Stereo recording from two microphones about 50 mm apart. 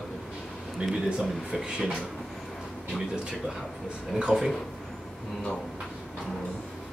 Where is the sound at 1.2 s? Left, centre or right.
Centre.